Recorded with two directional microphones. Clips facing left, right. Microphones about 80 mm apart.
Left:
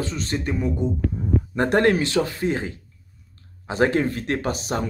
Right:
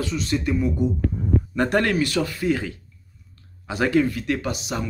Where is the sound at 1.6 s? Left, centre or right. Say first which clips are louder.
Left 3 dB; left.